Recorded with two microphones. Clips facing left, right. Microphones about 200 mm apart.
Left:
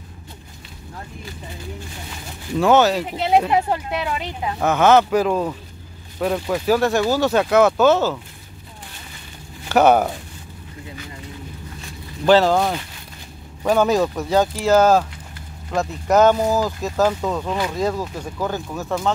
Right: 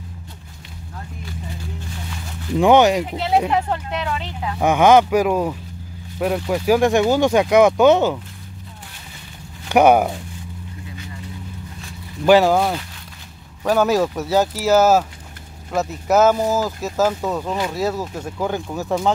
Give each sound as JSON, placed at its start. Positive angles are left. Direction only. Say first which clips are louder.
{"t": 2.5, "sound": "speech", "louder": "right 2 dB", "side_deg": -15}
{"t": 3.2, "sound": "speech", "louder": "left 1 dB", "side_deg": 15}
{"t": 4.6, "sound": "speech", "louder": "right 2 dB", "side_deg": -15}
{"t": 9.7, "sound": "speech", "louder": "right 1 dB", "side_deg": -10}
{"t": 12.3, "sound": "speech", "louder": "right 1 dB", "side_deg": -10}